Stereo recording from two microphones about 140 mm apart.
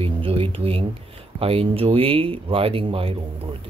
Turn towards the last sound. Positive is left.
turn(degrees=-40)  # may be behind; listen again after turning